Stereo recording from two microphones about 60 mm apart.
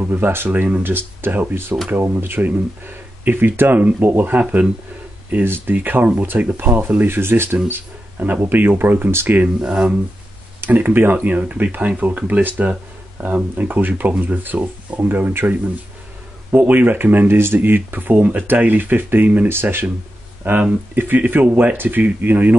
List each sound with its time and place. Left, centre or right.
0.1 s speech: right
8.2 s speech: right
9.6 s speech: centre
10.6 s speech: right
16.5 s speech: right